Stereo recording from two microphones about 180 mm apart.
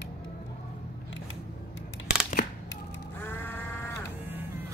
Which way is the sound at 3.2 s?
10° left (ahead or behind).